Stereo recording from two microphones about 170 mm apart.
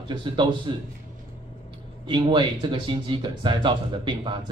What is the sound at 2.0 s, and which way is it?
Speech, 30° right (ahead or behind).